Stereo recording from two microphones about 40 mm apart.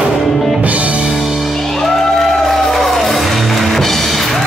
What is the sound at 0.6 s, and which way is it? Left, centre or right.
Music, right.